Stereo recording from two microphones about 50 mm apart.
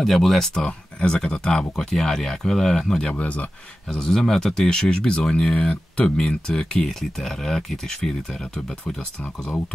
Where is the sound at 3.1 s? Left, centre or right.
Left.